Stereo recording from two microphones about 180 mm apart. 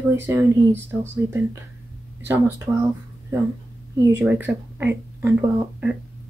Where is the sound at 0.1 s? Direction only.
10° right (ahead or behind).